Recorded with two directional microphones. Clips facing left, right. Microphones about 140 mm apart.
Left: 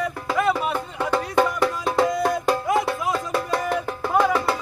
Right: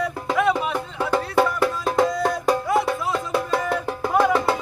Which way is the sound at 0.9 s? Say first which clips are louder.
Right 1 dB; 10° right (ahead or behind).